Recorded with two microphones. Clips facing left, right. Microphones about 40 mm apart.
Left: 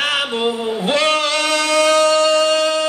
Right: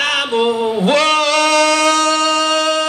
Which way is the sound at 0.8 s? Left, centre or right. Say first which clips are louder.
Right 3 dB; right.